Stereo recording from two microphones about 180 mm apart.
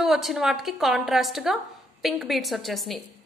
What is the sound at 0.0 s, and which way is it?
A woman's voice, centre (ahead or behind).